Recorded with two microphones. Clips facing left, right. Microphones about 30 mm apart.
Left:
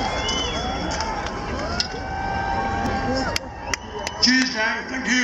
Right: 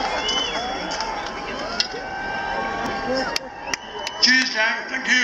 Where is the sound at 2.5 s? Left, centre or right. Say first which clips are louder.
Left 1 dB; centre.